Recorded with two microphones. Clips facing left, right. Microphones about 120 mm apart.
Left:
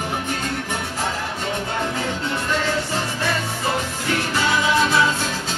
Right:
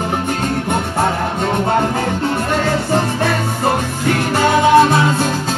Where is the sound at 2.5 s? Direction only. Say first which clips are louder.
Right 6 dB; 50° right (ahead or behind).